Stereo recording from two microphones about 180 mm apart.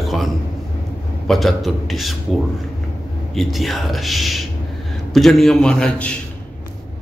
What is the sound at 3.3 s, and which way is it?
Speech, centre (ahead or behind).